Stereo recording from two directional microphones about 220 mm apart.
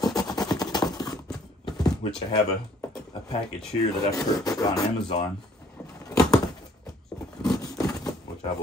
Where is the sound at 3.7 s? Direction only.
15° left (ahead or behind).